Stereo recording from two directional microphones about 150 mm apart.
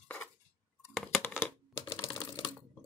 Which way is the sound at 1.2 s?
10° left (ahead or behind).